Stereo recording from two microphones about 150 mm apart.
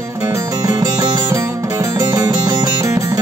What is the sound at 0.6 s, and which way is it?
Music, 25° right (ahead or behind).